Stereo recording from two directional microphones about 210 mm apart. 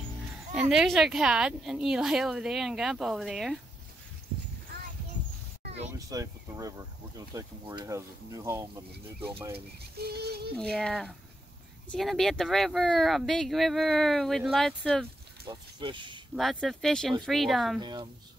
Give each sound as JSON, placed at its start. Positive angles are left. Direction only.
{"t": 0.7, "sound": "speech", "side_deg": 0}
{"t": 5.9, "sound": "speech", "side_deg": -15}
{"t": 9.9, "sound": "a sound", "side_deg": -50}
{"t": 10.6, "sound": "speech", "side_deg": 5}
{"t": 15.4, "sound": "speech", "side_deg": -20}
{"t": 16.3, "sound": "speech", "side_deg": 0}
{"t": 17.7, "sound": "speech", "side_deg": -20}